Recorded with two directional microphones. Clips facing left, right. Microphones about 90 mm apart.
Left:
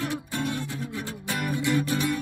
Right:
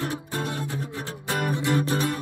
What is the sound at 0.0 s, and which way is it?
Music, 35° right (ahead or behind).